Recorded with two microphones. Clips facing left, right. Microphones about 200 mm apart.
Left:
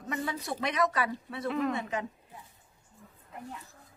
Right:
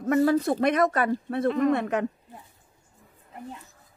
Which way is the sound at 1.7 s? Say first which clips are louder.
Right 8 dB; 65° right (ahead or behind).